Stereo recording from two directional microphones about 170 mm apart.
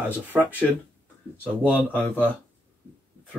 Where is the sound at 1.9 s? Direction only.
10° left (ahead or behind).